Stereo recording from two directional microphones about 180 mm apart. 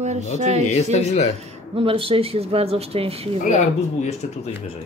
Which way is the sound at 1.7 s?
30° right (ahead or behind).